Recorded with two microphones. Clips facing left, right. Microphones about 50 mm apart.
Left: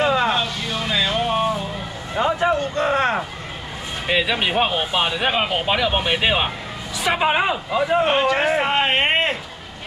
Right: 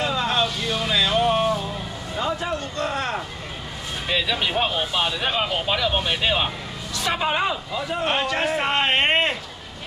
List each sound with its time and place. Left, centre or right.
0.0 s vehicle: left
0.3 s vehicle: centre
2.1 s vehicle: left
2.5 s a sound: left
4.1 s speech: left
8.1 s speech: centre